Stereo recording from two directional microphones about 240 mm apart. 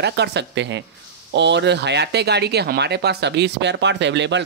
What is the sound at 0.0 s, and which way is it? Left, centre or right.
Speech, right.